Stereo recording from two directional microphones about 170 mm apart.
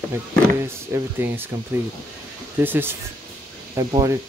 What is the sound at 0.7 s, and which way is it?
Speech, 15° right (ahead or behind).